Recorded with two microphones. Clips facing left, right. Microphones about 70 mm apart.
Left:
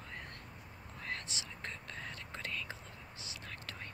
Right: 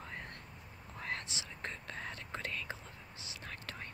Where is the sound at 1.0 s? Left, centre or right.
Right.